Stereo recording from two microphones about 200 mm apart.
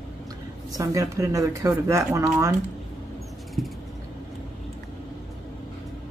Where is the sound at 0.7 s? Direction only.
15° right (ahead or behind).